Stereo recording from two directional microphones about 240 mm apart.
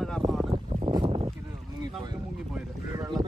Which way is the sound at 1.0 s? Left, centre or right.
Right.